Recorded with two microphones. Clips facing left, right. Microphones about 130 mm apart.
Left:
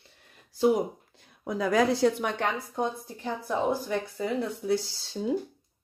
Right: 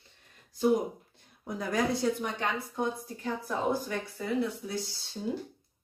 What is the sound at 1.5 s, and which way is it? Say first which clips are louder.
Speech: left 6 dB; 90° left.